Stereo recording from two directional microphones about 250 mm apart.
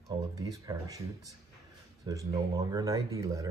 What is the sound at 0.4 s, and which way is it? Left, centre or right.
Speech, centre.